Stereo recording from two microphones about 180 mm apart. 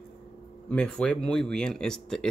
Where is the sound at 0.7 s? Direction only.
5° left (ahead or behind).